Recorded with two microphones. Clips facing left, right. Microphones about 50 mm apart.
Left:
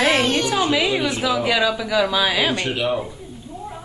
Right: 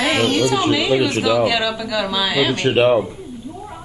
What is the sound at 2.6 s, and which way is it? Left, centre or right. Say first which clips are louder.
Speech: right 8 dB; right.